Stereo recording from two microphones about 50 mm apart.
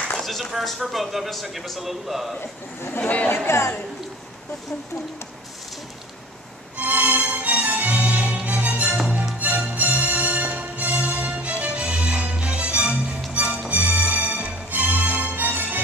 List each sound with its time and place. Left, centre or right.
0.2 s speech: centre
3.0 s a woman's voice: left
3.4 s a woman's voice: left
6.8 s music: right